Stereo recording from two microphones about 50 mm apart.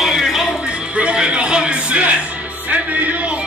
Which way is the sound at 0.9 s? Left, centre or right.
Centre.